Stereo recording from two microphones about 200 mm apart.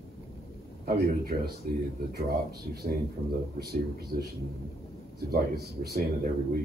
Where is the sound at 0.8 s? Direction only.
50° right (ahead or behind).